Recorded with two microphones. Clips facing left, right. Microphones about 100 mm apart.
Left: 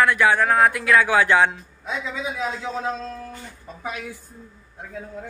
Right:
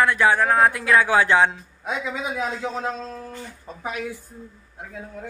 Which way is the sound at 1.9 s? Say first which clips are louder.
Right 1 dB; 50° right (ahead or behind).